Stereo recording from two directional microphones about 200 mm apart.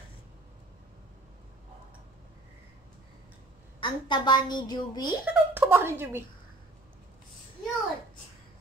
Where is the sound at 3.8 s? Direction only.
25° left (ahead or behind).